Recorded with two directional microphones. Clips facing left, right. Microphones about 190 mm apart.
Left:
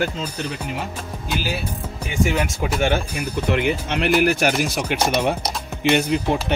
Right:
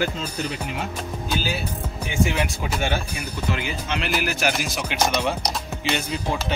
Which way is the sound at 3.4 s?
60° left (ahead or behind).